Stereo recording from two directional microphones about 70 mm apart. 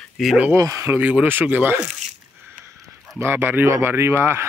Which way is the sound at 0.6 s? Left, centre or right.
Right.